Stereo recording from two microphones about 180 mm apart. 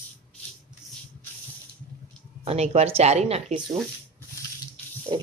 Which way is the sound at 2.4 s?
35° right (ahead or behind).